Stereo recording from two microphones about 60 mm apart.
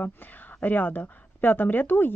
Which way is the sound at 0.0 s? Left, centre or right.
Left.